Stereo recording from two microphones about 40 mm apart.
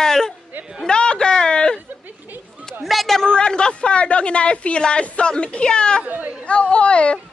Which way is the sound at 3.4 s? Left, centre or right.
Left.